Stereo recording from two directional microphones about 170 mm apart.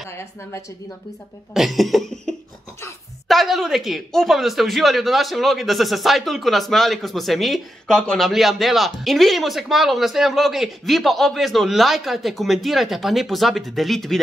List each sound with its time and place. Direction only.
0.1 s a woman's voice: 15° left (ahead or behind)
1.5 s speech: centre (ahead or behind)